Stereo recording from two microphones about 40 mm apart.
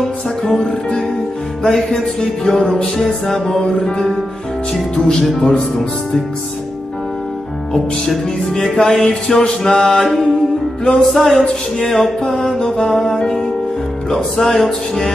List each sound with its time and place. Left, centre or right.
0.4 s music: centre
4.9 s music: centre
8.1 s music: centre